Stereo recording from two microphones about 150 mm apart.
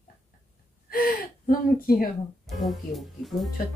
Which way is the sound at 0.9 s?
75° left (ahead or behind).